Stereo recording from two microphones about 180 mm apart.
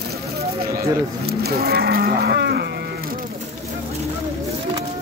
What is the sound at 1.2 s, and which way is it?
Livestock, 60° right (ahead or behind).